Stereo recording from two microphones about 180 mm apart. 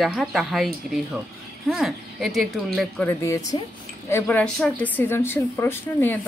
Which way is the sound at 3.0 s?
15° left (ahead or behind).